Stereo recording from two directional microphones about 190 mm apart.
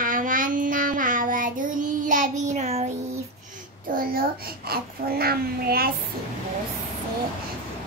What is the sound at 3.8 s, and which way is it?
Child singing, 50° right (ahead or behind).